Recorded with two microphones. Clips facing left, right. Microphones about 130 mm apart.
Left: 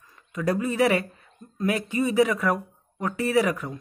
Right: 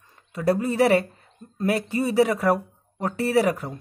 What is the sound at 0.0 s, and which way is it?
Speech, 30° right (ahead or behind).